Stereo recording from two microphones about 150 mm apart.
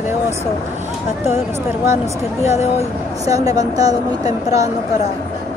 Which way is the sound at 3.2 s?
25° right (ahead or behind).